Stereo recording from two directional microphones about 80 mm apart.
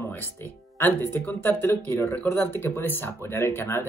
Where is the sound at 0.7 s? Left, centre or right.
Left.